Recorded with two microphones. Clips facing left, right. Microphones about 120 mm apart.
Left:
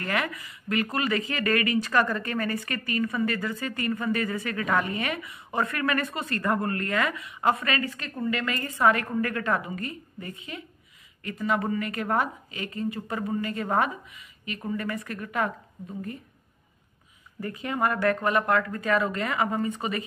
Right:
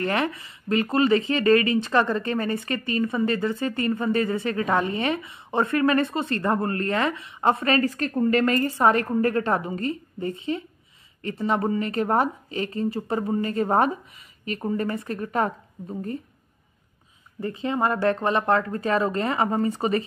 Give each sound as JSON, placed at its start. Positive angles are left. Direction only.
{"t": 0.0, "sound": "speech", "side_deg": -30}
{"t": 17.4, "sound": "speech", "side_deg": -25}